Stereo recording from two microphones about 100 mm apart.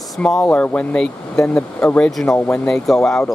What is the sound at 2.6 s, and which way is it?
Speech, 5° left (ahead or behind).